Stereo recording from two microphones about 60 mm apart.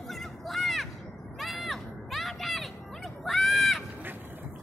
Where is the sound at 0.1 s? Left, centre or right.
Centre.